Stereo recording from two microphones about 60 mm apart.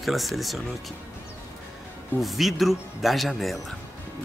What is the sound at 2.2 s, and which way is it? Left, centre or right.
Speech, centre.